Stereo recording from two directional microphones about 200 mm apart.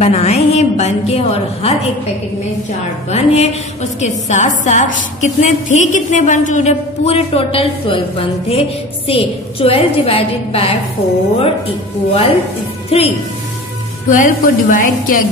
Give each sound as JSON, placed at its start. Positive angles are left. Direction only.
{"t": 0.0, "sound": "a woman's voice", "side_deg": 30}
{"t": 3.1, "sound": "a woman's voice", "side_deg": 30}
{"t": 14.1, "sound": "a woman's voice", "side_deg": 40}